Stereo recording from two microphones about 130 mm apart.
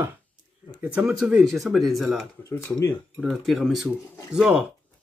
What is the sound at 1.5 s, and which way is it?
Speech, centre (ahead or behind).